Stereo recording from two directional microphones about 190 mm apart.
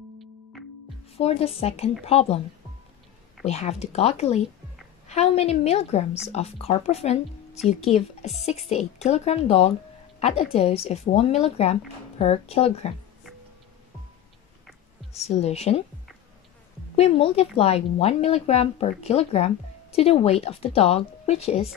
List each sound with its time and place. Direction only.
1.1 s a woman's voice: 30° left (ahead or behind)
3.4 s a woman's voice: 35° left (ahead or behind)
15.1 s a woman's voice: 35° left (ahead or behind)
16.9 s a woman's voice: 30° left (ahead or behind)